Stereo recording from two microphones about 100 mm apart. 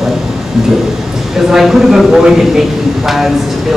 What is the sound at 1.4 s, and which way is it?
A man's voice, 5° right (ahead or behind).